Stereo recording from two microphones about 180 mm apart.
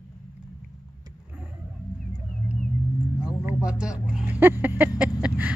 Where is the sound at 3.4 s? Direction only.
5° right (ahead or behind).